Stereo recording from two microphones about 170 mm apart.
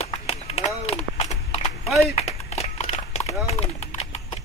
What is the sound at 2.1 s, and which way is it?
Horse, 40° left (ahead or behind).